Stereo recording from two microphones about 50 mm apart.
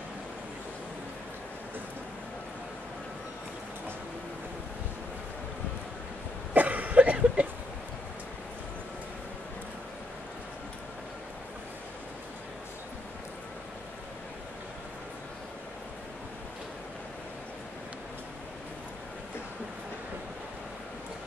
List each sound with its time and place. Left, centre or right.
6.5 s cough: right